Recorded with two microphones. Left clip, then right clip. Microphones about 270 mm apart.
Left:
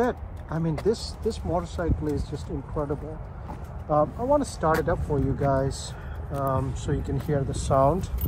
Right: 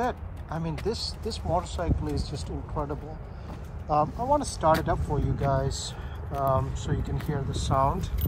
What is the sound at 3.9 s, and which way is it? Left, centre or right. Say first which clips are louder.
Speech: left 2 dB; centre.